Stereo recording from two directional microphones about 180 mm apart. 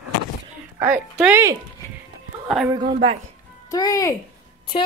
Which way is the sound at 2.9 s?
30° right (ahead or behind).